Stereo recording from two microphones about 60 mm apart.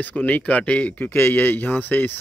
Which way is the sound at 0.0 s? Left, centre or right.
Left.